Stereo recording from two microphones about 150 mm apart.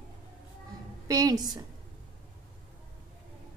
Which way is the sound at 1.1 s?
25° right (ahead or behind).